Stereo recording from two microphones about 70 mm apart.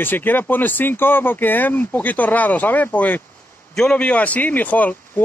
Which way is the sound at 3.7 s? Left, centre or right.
Centre.